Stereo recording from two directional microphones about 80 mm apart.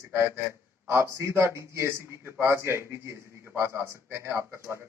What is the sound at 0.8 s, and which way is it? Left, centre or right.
A man's voice, right.